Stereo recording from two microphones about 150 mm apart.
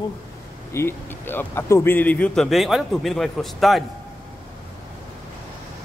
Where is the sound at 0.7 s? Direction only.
15° left (ahead or behind).